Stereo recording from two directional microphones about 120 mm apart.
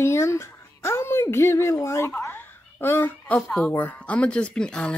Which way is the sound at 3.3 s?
5° left (ahead or behind).